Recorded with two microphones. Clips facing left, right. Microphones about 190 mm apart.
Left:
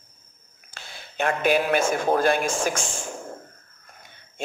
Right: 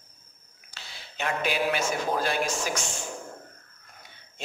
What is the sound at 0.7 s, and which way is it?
Speech, 50° left (ahead or behind).